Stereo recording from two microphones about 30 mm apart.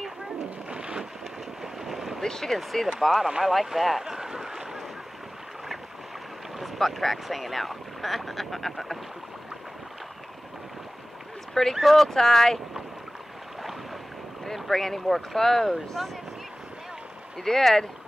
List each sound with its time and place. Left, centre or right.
0.7 s boat: right
1.6 s boat: centre
2.2 s speech: centre
4.0 s boat: centre
6.6 s speech: centre
11.7 s speech: centre
14.4 s speech: centre
17.4 s speech: centre